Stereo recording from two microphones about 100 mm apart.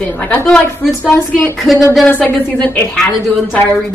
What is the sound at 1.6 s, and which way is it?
Speech, centre (ahead or behind).